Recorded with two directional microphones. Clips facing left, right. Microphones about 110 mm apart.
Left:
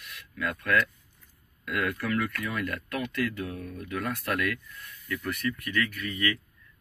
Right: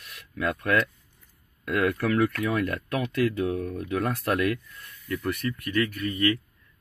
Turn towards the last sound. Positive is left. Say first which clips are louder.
# right 5 dB
turn(degrees=-35)  # may be behind; listen again after turning